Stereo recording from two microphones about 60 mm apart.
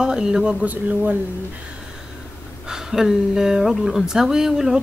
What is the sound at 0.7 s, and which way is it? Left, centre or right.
Speech, right.